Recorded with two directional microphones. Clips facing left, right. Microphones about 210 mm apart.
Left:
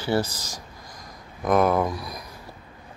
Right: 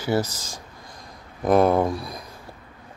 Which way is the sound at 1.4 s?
30° right (ahead or behind).